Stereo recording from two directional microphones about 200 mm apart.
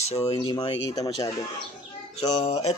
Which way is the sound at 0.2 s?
20° left (ahead or behind).